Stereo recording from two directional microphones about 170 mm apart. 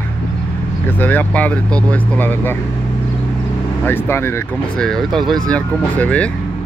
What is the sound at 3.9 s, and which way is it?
Speech, 15° left (ahead or behind).